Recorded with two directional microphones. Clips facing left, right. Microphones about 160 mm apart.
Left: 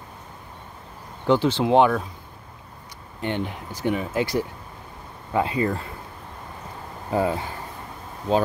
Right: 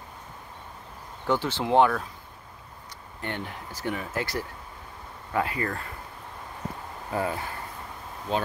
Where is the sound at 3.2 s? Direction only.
20° left (ahead or behind).